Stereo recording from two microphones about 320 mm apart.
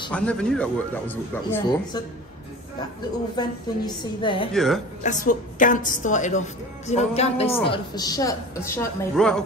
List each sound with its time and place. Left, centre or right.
0.1 s a man's voice: centre
3.3 s a woman's voice: centre
4.6 s a man's voice: centre
5.0 s a woman's voice: left; by 9.4 s centre